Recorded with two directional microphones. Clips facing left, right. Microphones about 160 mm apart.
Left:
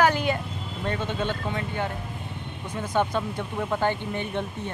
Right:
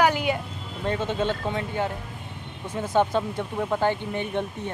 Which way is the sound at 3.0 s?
20° right (ahead or behind).